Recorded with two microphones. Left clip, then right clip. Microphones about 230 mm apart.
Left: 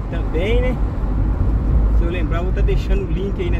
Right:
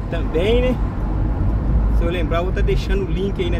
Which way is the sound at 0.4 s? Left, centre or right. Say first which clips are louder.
Right 3 dB; right.